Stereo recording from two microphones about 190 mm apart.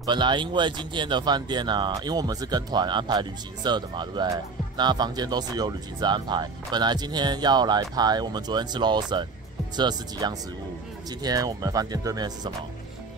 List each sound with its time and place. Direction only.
0.0 s speech: 25° right (ahead or behind)